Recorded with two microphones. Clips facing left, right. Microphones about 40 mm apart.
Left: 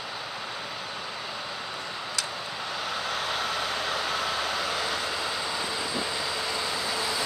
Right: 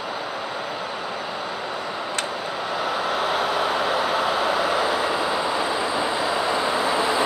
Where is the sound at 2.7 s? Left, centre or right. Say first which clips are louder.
Right 7 dB; centre.